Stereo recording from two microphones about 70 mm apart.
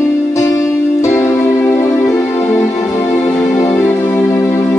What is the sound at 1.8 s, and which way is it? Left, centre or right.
Music, left.